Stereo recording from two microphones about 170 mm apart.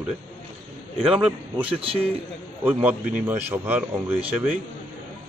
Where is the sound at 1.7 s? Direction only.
35° right (ahead or behind).